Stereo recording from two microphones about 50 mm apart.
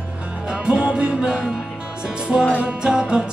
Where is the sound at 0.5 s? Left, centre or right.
Centre.